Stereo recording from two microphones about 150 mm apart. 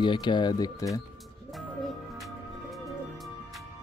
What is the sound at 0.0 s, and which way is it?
Speech, 30° left (ahead or behind).